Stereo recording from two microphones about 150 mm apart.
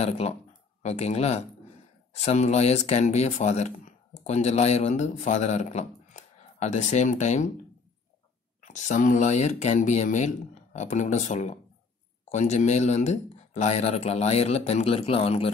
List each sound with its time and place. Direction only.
0.0 s speech: 45° left (ahead or behind)
8.5 s speech: 55° left (ahead or behind)